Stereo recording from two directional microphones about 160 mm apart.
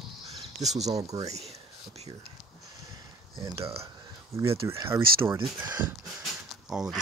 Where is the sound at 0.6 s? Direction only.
45° right (ahead or behind).